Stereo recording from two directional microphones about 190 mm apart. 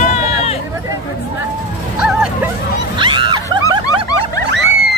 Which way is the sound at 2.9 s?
25° right (ahead or behind).